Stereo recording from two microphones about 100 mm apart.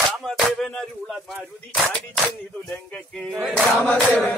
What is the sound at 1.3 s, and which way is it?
Battle cry, 10° left (ahead or behind).